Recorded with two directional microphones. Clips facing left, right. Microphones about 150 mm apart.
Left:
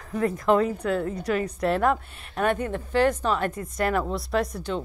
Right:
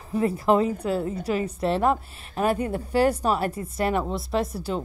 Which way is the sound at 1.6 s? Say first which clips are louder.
Even; 30° right (ahead or behind).